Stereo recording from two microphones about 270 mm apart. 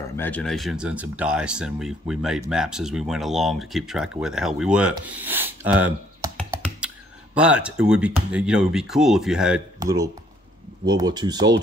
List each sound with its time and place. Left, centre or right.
0.2 s speech: centre
6.3 s computer keyboard: centre
7.3 s speech: centre
9.8 s speech: centre